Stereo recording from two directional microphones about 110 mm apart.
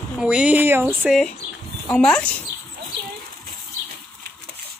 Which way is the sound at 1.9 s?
5° left (ahead or behind).